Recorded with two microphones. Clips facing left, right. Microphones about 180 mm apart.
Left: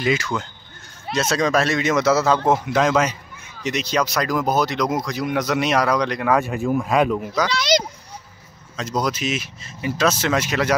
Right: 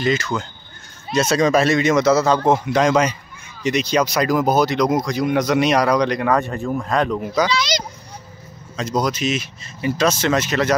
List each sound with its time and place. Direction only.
0.0 s speech: 10° left (ahead or behind)
7.5 s speech: 60° left (ahead or behind)
8.7 s speech: centre (ahead or behind)